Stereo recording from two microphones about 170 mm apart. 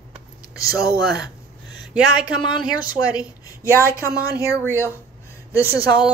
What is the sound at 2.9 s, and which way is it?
A woman's voice, 20° left (ahead or behind).